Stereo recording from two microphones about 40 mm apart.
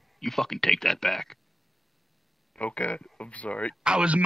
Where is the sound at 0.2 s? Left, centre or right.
Centre.